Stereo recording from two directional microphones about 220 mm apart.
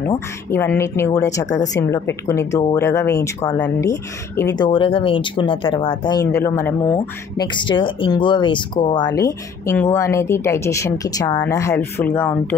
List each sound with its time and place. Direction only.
0.0 s speech: 10° left (ahead or behind)